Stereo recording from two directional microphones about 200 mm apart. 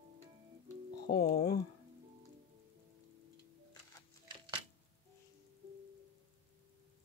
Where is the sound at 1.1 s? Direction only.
50° left (ahead or behind).